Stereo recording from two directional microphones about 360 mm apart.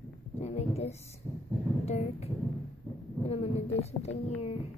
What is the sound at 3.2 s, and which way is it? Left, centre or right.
Speech, centre.